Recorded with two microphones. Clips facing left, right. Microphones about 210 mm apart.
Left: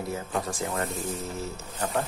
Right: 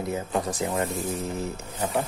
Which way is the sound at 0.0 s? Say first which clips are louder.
Right 3 dB; 20° right (ahead or behind).